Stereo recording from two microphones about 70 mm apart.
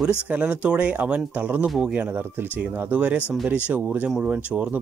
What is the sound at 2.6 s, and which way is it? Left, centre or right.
Speech, right.